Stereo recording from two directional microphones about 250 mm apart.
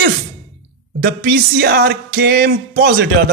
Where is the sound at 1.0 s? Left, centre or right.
Right.